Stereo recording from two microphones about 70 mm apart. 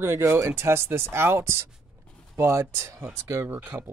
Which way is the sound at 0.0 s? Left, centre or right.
Right.